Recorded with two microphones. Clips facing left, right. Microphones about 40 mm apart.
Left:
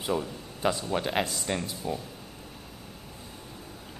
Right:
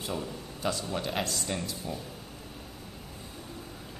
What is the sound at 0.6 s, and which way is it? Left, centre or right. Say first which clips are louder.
Speech: left 4 dB; left.